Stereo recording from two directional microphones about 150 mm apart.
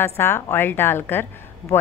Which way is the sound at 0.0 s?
15° left (ahead or behind).